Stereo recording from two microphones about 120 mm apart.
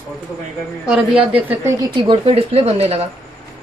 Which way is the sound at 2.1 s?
55° right (ahead or behind).